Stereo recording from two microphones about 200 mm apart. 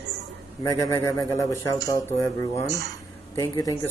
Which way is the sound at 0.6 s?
15° left (ahead or behind).